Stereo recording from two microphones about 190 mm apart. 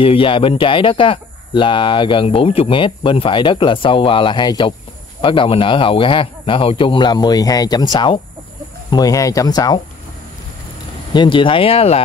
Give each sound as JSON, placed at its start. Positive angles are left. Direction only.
{"t": 0.0, "sound": "speech", "side_deg": 30}
{"t": 11.1, "sound": "speech", "side_deg": 25}